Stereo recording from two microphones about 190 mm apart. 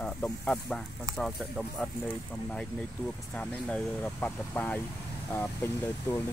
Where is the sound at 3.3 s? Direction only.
5° left (ahead or behind).